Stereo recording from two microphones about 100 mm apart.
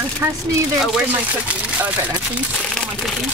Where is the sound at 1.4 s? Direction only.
15° right (ahead or behind).